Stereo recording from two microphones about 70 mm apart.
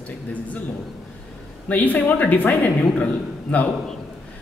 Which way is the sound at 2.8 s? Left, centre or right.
Centre.